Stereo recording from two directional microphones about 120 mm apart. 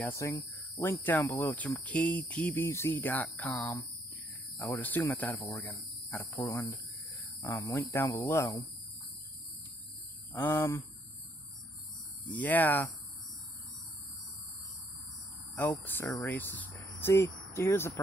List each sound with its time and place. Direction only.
0.1 s speech: 25° left (ahead or behind)
3.5 s speech: 25° left (ahead or behind)
4.7 s speech: 15° left (ahead or behind)
10.3 s speech: 15° left (ahead or behind)
12.3 s speech: 15° left (ahead or behind)
15.8 s speech: 15° left (ahead or behind)